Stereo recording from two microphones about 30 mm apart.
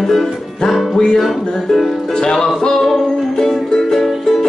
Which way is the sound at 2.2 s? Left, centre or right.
Left.